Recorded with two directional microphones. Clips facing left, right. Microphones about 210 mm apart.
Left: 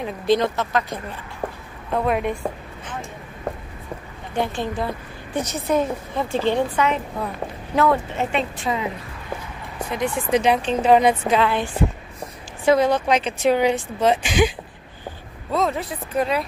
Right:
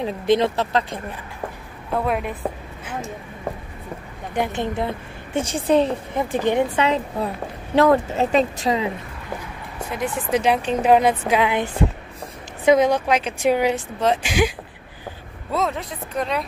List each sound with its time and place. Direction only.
0.0 s speech: 30° right (ahead or behind)
1.9 s speech: centre (ahead or behind)
2.8 s a sound: 10° right (ahead or behind)
4.3 s a woman's voice: 20° right (ahead or behind)
6.1 s a woman's voice: 15° right (ahead or behind)
6.8 s speech: 30° right (ahead or behind)
9.8 s a woman's voice: 5° right (ahead or behind)
15.5 s speech: centre (ahead or behind)